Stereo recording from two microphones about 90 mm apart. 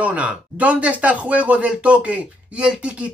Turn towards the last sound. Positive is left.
turn(degrees=-10)  # may be behind; listen again after turning